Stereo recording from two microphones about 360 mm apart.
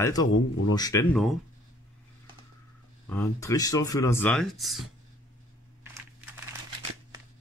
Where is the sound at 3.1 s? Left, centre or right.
Centre.